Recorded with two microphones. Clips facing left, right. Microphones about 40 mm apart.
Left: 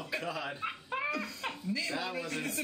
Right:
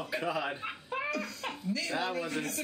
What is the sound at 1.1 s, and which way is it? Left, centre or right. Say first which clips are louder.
Giggle: right 1 dB; centre.